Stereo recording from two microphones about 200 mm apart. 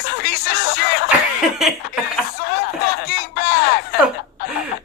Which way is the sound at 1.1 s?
5° right (ahead or behind).